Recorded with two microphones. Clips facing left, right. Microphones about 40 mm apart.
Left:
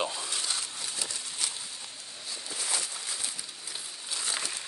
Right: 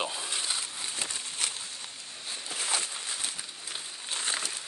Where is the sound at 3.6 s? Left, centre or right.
Right.